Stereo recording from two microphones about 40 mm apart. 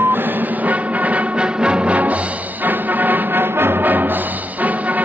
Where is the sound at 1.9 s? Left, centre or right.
Right.